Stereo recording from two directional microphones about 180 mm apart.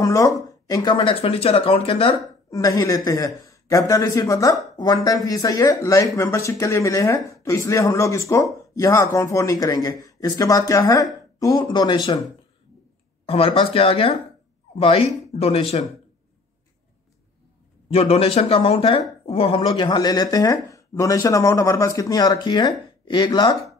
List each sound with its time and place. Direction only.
0.0 s speech: 20° left (ahead or behind)
2.5 s speech: 20° left (ahead or behind)
13.2 s speech: 30° left (ahead or behind)
17.8 s speech: 35° left (ahead or behind)